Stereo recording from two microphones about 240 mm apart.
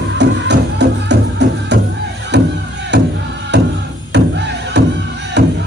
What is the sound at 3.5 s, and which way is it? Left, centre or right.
Music, right.